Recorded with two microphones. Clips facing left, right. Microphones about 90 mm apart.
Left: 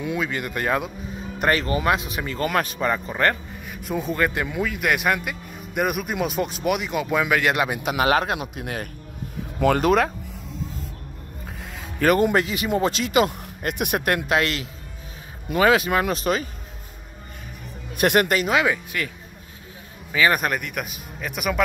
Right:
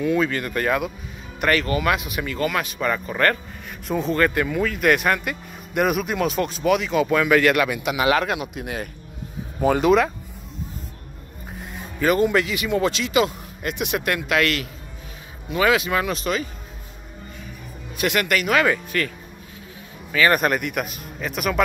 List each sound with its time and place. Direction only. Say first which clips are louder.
0.0 s speech: right 5 dB; 15° left (ahead or behind); by 3.0 s 30° left (ahead or behind)
3.1 s speech: right 1 dB; 20° left (ahead or behind)
7.5 s speech: right 2 dB; 30° left (ahead or behind)
7.8 s speech: even; 40° left (ahead or behind)
12.0 s speech: even; 50° left (ahead or behind)
17.9 s speech: left 4 dB; 55° left (ahead or behind)
18.2 s speech: left 1 dB; 30° left (ahead or behind)
18.5 s speech: right 2 dB; 15° left (ahead or behind)